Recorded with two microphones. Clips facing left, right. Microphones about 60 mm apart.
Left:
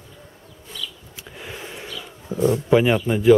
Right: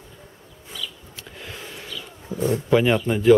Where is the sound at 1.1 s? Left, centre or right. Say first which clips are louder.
Left 2 dB; centre.